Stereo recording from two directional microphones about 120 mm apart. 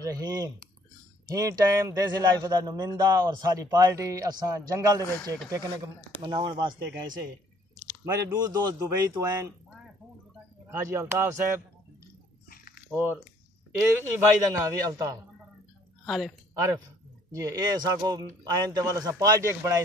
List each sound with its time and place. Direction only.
0.0 s a man's voice: 30° right (ahead or behind)
5.0 s speech: 20° left (ahead or behind)
5.5 s a man's voice: 30° right (ahead or behind)
8.0 s speech: 25° right (ahead or behind)
10.7 s speech: 20° right (ahead or behind)
12.9 s speech: 15° right (ahead or behind)
14.5 s speech: 30° right (ahead or behind)
16.1 s a woman's voice: centre (ahead or behind)
17.3 s a man's voice: 25° right (ahead or behind)